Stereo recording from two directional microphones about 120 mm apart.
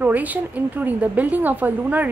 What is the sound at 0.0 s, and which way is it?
A woman's voice, 15° right (ahead or behind).